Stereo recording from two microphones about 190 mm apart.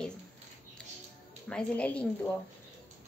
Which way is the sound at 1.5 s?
5° left (ahead or behind).